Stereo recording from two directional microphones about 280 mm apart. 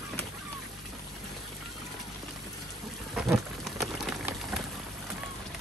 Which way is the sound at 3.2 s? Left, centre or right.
Centre.